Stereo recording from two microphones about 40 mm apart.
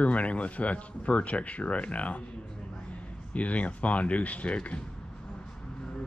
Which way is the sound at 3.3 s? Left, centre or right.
Left.